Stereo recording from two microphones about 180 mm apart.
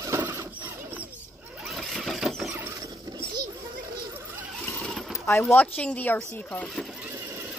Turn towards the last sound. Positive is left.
turn(degrees=5)  # may be behind; listen again after turning